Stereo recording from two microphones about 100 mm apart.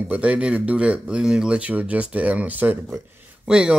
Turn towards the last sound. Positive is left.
turn(degrees=-10)  # may be behind; listen again after turning